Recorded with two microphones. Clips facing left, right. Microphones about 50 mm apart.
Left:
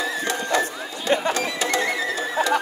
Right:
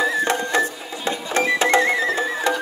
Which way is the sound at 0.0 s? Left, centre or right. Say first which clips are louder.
Right 5 dB; right.